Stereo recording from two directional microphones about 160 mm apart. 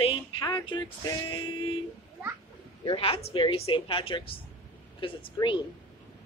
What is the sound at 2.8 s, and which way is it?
A woman's voice, 35° left (ahead or behind).